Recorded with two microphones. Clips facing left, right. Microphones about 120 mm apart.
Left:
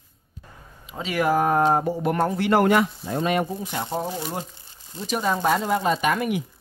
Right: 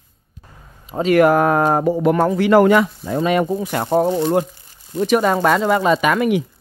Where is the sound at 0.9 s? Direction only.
50° right (ahead or behind); by 2.3 s 90° right.